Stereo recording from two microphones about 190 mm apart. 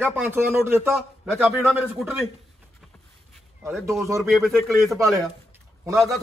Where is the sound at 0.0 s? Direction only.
10° right (ahead or behind).